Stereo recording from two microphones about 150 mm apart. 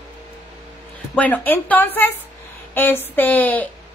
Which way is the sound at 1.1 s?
10° left (ahead or behind).